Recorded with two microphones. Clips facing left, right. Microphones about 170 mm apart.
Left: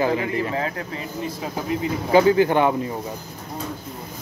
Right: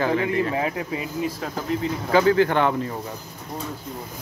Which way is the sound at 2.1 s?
20° left (ahead or behind).